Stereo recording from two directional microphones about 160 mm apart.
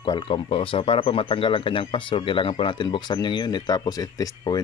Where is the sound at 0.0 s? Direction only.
30° left (ahead or behind).